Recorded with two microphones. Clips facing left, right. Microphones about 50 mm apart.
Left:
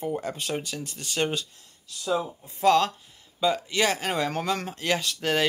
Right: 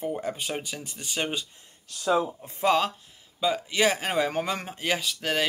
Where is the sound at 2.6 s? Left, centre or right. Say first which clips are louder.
Left 3 dB; centre.